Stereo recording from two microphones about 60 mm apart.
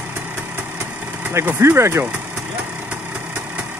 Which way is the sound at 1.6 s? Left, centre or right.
Right.